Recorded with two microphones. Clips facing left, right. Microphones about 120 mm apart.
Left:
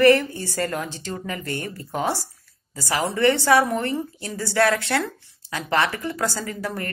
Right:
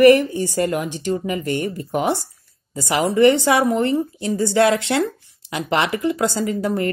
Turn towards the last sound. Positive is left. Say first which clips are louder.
# right 8 dB
turn(degrees=-20)  # may be behind; listen again after turning